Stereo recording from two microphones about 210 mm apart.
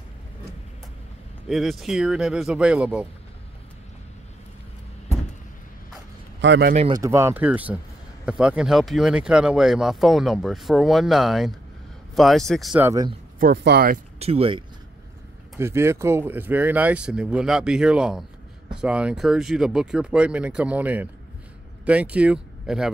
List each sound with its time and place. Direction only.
1.5 s speech: centre (ahead or behind)
6.4 s a man's voice: 60° right (ahead or behind)
6.9 s speech: 15° right (ahead or behind)
12.8 s speech: 15° right (ahead or behind)
13.4 s speech: 50° right (ahead or behind)
14.2 s speech: 25° right (ahead or behind)
15.5 s speech: 10° right (ahead or behind)